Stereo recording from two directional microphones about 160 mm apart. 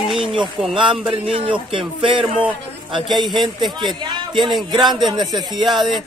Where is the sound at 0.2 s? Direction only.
35° right (ahead or behind).